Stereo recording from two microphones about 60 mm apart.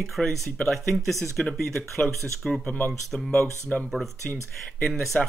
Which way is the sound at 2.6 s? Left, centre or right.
Left.